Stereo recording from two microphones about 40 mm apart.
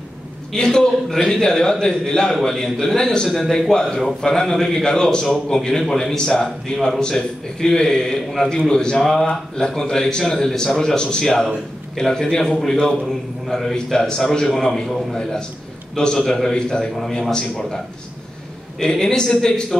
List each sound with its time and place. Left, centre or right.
0.5 s a man's voice: centre
15.1 s a man's voice: centre